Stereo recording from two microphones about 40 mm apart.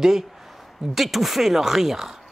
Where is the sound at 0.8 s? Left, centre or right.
Centre.